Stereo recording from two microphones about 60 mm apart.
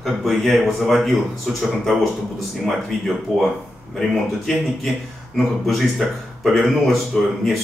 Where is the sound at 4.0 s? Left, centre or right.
Centre.